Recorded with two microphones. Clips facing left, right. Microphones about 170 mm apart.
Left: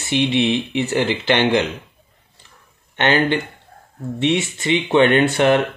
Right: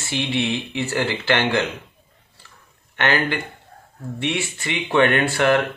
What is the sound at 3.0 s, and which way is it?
Speech, 20° left (ahead or behind).